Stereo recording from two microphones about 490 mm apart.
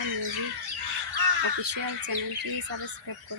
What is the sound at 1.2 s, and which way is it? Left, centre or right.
Speech, right.